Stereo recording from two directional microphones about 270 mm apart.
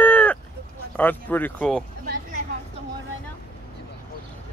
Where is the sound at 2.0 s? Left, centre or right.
Right.